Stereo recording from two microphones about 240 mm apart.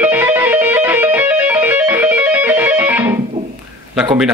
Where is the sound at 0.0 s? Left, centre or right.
Centre.